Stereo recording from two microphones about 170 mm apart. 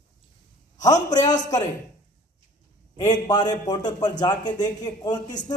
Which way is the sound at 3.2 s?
25° left (ahead or behind).